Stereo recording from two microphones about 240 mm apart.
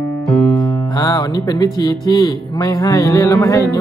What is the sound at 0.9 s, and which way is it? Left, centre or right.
Speech, centre.